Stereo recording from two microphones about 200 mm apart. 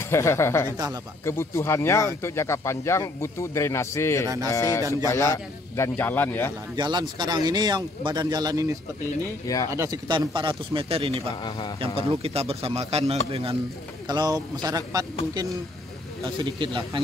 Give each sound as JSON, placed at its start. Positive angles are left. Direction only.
{"t": 0.0, "sound": "speech", "side_deg": 15}
{"t": 6.8, "sound": "speech", "side_deg": -20}
{"t": 9.8, "sound": "speech", "side_deg": -20}
{"t": 11.4, "sound": "a man's voice", "side_deg": 20}
{"t": 11.8, "sound": "a man's voice", "side_deg": -30}
{"t": 16.3, "sound": "speech", "side_deg": -25}